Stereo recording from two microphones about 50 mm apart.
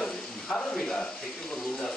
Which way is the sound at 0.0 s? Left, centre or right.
Centre.